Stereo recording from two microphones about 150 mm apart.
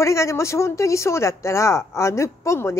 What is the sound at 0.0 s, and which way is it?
Speech, 20° left (ahead or behind).